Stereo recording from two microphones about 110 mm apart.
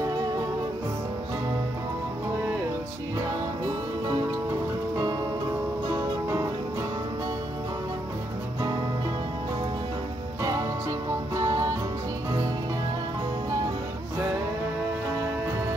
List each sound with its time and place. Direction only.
10.4 s music: 35° right (ahead or behind)